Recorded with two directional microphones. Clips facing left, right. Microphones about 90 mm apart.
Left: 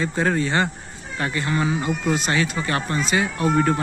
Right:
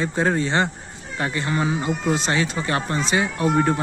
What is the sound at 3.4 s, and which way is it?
Speech, 15° right (ahead or behind).